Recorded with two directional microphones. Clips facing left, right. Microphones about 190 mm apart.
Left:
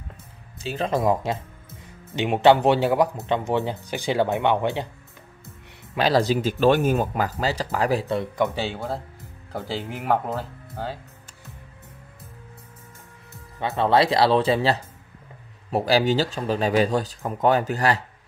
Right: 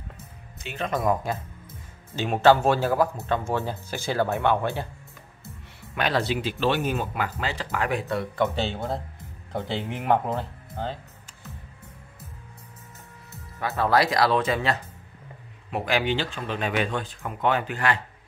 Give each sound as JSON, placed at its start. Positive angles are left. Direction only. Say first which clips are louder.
{"t": 0.6, "sound": "speech", "louder": "left 4 dB", "side_deg": 35}
{"t": 5.9, "sound": "speech", "louder": "left 5 dB", "side_deg": 35}
{"t": 8.2, "sound": "speech", "louder": "left 1 dB", "side_deg": 10}
{"t": 9.5, "sound": "speech", "louder": "even", "side_deg": 0}
{"t": 13.6, "sound": "speech", "louder": "left 3 dB", "side_deg": 25}